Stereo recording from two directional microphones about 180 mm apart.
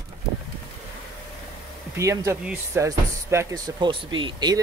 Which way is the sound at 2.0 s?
15° right (ahead or behind).